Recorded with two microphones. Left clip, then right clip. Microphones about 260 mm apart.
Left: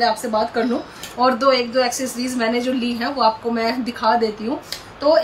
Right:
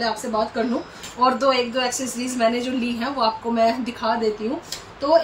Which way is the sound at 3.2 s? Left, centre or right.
Centre.